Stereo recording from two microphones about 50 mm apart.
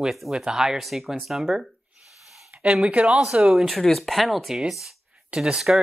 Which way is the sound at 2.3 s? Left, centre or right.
Centre.